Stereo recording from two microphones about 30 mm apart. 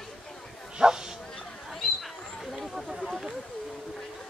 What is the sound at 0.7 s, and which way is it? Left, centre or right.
Bow-wow, right.